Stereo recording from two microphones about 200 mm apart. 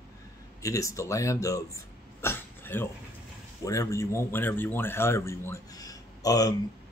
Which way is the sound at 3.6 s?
15° left (ahead or behind).